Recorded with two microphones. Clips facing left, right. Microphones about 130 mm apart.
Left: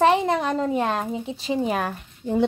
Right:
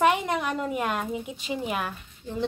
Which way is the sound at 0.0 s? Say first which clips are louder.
Left 4 dB; 30° left (ahead or behind).